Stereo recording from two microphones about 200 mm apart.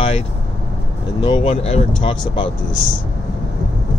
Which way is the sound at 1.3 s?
30° left (ahead or behind).